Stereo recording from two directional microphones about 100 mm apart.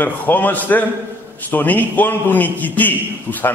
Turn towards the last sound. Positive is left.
turn(degrees=15)  # may be behind; listen again after turning